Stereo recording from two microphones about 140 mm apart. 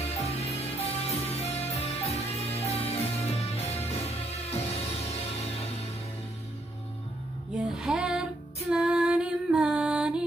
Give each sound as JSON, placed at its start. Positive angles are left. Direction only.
{"t": 0.0, "sound": "music", "side_deg": 50}
{"t": 7.7, "sound": "music", "side_deg": -5}